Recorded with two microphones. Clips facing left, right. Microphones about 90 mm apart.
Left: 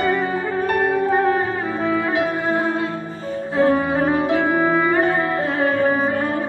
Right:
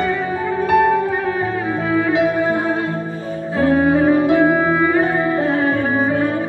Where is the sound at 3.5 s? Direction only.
45° left (ahead or behind).